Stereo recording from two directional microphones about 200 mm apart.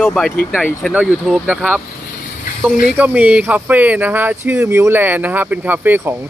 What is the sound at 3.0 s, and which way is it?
Speech, 5° right (ahead or behind).